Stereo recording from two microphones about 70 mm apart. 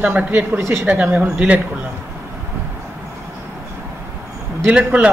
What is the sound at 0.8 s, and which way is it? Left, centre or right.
Speech, right.